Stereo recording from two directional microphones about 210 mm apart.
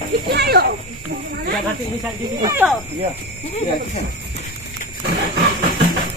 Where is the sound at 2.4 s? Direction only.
15° right (ahead or behind).